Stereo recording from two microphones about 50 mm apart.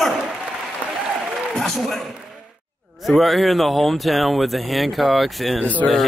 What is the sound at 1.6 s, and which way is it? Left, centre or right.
Speech, centre.